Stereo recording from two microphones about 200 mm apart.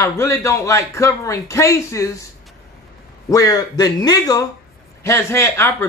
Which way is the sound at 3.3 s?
15° left (ahead or behind).